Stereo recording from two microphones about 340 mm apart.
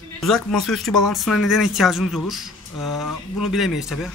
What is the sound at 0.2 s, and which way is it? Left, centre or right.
Speech, centre.